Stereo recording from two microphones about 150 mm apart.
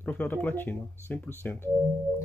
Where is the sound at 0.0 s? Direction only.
10° left (ahead or behind).